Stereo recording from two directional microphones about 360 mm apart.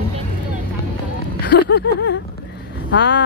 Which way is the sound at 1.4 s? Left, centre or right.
Left.